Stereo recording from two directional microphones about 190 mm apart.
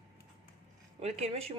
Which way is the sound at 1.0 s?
35° right (ahead or behind).